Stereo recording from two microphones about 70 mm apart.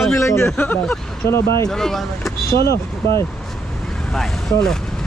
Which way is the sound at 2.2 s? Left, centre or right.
Left.